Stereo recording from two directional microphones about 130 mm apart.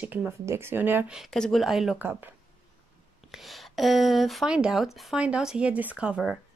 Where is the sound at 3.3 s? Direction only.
Centre (ahead or behind).